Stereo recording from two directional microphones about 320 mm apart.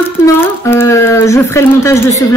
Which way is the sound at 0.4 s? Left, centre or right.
Centre.